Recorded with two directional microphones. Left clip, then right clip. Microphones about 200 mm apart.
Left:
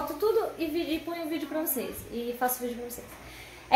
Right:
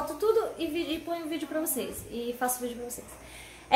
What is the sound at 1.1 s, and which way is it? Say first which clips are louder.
Speech: right 2 dB; centre (ahead or behind).